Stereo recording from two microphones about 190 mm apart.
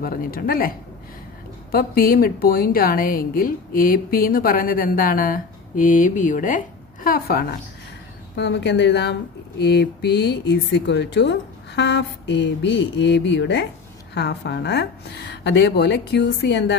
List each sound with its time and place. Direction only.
0.0 s a woman's voice: 50° left (ahead or behind)
8.4 s speech: 65° left (ahead or behind)